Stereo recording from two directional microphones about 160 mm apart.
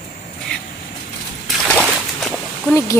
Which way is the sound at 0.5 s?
5° left (ahead or behind).